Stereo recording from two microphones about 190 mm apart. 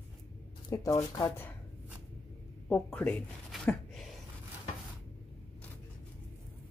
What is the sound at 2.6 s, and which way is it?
Speech, 5° left (ahead or behind).